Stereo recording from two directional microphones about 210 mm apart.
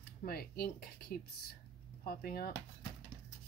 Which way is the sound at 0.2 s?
45° left (ahead or behind).